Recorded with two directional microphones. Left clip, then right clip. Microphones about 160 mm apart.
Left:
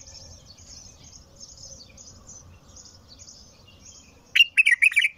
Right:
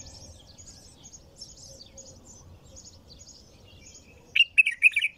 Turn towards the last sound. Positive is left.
turn(degrees=-20)  # may be behind; listen again after turning